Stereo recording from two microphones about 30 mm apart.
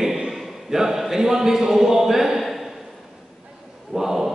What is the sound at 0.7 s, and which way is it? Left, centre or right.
A man's voice, centre.